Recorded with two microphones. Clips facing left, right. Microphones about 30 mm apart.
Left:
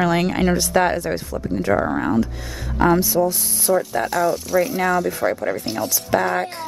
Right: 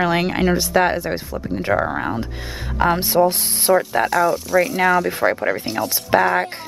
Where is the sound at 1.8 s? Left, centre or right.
Centre.